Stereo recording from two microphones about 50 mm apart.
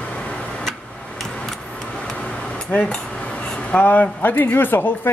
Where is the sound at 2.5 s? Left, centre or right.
Left.